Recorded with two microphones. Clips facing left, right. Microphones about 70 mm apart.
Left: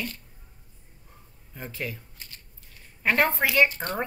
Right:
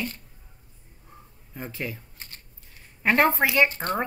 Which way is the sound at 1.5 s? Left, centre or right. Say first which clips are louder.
Right 1 dB; centre.